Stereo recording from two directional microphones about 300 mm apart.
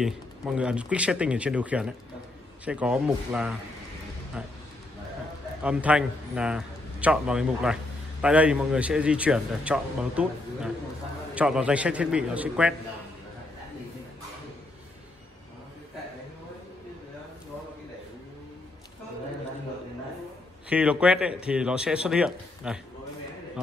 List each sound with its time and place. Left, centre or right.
0.0 s a man's voice: centre
5.6 s a man's voice: centre
20.7 s a man's voice: centre